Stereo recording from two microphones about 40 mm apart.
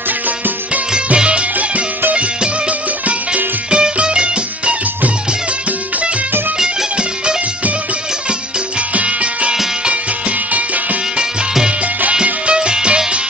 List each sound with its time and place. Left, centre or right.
0.9 s music: right
1.6 s music: right
3.7 s music: right
6.6 s music: right
8.9 s music: right
12.4 s music: right